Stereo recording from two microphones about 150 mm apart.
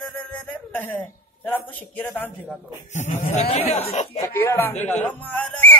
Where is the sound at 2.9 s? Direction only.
55° left (ahead or behind).